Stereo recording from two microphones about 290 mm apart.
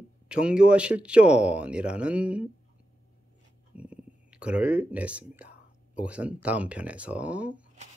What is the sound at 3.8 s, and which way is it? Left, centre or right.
Speech, centre.